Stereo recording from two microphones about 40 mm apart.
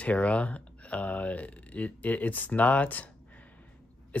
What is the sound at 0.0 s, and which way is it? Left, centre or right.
Speech, left.